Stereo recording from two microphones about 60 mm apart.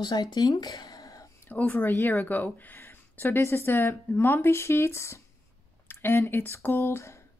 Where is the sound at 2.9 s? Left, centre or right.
Left.